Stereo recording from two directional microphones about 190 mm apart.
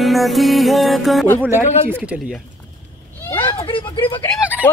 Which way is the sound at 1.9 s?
5° right (ahead or behind).